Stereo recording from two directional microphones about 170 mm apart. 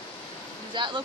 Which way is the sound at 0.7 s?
25° right (ahead or behind).